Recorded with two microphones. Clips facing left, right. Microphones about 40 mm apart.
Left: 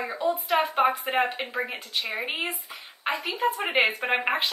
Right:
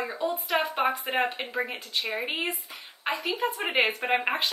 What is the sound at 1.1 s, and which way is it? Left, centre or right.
A woman's voice, centre.